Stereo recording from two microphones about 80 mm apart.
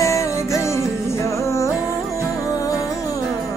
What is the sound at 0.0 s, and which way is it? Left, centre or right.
Music, left.